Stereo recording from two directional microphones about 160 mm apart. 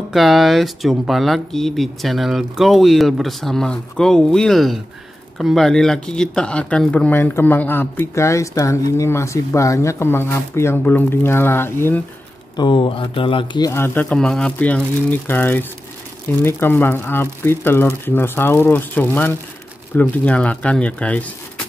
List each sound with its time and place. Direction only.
0.1 s speech: centre (ahead or behind)
12.5 s speech: 30° left (ahead or behind)
13.7 s speech: 15° left (ahead or behind)